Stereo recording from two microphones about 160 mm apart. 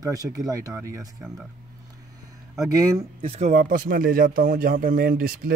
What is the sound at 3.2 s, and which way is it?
Speech, 35° right (ahead or behind).